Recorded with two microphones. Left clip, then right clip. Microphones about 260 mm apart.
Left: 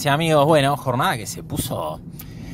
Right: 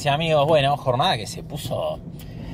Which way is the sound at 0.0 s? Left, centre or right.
Left.